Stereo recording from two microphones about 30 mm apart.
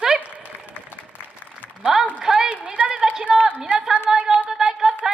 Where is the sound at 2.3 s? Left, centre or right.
Right.